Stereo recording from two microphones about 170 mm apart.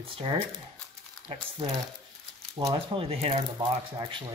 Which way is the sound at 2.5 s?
25° right (ahead or behind).